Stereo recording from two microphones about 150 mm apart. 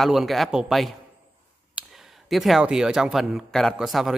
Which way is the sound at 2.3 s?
Centre (ahead or behind).